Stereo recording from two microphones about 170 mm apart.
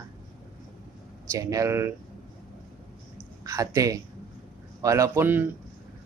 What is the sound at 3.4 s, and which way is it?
Speech, 20° right (ahead or behind).